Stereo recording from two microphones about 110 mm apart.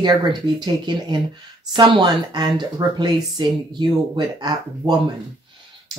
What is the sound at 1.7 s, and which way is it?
Speech, 45° right (ahead or behind).